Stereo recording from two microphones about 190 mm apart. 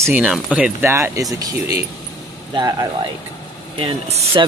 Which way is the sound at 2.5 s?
20° right (ahead or behind).